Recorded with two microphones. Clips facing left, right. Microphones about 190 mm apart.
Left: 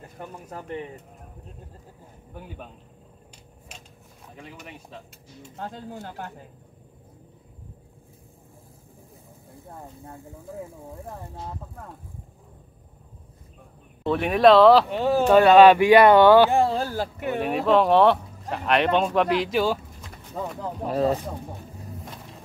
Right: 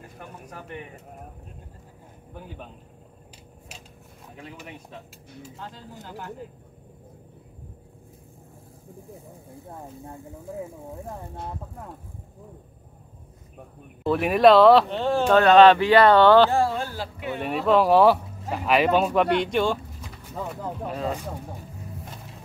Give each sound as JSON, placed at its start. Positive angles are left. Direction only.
{"t": 4.4, "sound": "speech", "side_deg": 0}
{"t": 14.0, "sound": "speech", "side_deg": 0}
{"t": 16.7, "sound": "speech", "side_deg": 45}
{"t": 17.3, "sound": "speech", "side_deg": 0}
{"t": 20.9, "sound": "speech", "side_deg": 35}